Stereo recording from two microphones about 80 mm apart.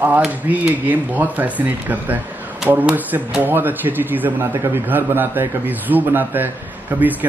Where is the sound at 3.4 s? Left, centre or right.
Right.